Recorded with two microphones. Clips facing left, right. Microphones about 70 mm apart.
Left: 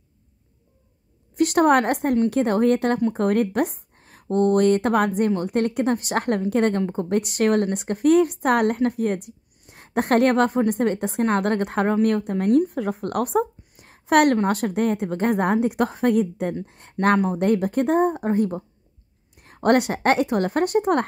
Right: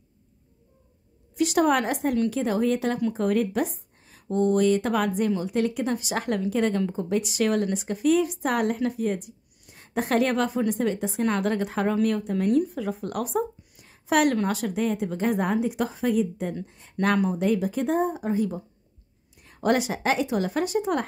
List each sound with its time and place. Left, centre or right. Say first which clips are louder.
1.3 s a woman's voice: left 4 dB; left
17.0 s a woman's voice: left 4 dB; left